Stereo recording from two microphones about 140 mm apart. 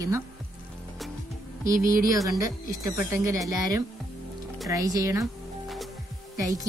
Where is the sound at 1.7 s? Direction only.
75° right (ahead or behind).